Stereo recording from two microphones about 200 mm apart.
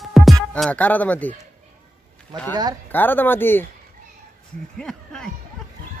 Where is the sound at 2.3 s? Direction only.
20° right (ahead or behind).